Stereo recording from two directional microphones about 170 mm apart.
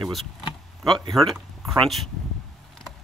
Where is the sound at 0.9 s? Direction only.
25° right (ahead or behind).